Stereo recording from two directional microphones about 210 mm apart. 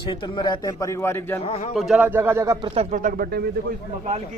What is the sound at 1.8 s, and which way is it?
Speech, 5° right (ahead or behind).